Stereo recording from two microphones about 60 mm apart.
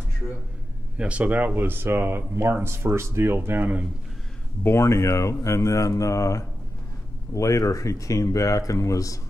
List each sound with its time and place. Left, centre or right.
0.9 s speech: right
4.6 s speech: left